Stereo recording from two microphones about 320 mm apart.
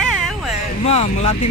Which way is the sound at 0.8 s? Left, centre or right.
Centre.